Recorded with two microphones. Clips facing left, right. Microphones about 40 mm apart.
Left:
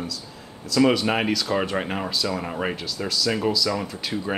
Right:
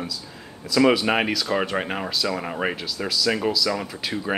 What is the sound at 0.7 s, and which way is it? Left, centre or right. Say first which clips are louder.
Speech: right 1 dB; centre.